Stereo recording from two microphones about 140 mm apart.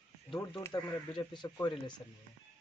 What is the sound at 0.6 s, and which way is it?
Speech, 30° left (ahead or behind).